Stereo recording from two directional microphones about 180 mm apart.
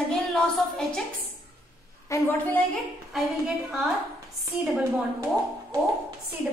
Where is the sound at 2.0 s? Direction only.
15° left (ahead or behind).